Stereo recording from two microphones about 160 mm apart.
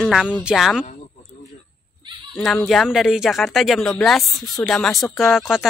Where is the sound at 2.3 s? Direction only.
5° left (ahead or behind).